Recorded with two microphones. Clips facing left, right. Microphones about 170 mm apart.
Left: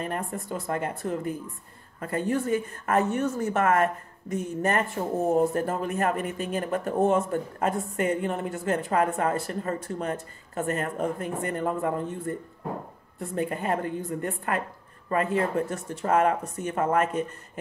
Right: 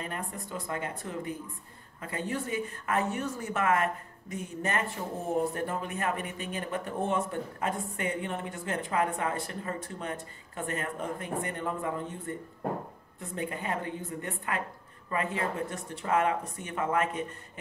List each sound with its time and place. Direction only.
0.0 s a woman's voice: 50° left (ahead or behind)